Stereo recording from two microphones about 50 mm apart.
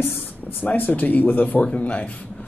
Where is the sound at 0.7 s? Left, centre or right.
Left.